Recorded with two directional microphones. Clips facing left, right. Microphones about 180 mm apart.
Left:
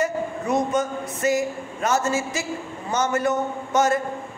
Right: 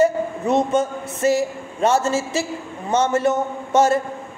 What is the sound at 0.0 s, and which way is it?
A man's voice, 25° right (ahead or behind).